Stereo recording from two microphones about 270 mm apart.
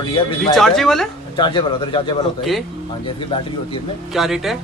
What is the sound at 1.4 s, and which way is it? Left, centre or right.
Speech, centre.